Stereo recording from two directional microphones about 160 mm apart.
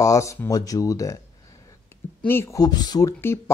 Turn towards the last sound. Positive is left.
turn(degrees=20)  # may be behind; listen again after turning